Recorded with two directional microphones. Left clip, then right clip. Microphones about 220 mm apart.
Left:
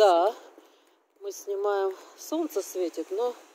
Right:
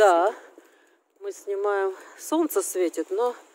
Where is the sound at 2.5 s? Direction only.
50° right (ahead or behind).